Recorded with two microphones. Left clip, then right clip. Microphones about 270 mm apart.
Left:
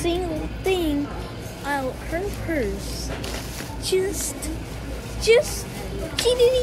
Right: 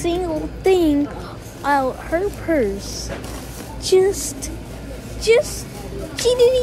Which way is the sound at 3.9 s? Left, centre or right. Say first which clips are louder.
Right 8 dB; centre.